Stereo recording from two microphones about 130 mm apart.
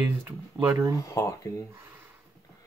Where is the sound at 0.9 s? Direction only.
25° left (ahead or behind).